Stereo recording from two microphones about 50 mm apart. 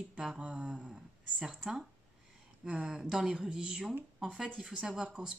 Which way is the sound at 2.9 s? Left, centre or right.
Centre.